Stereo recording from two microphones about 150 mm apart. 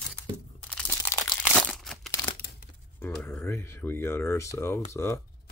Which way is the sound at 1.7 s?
Centre (ahead or behind).